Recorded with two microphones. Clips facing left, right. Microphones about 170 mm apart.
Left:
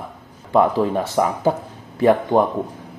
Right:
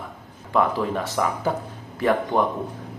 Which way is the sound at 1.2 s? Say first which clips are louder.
Left 6 dB; 40° left (ahead or behind).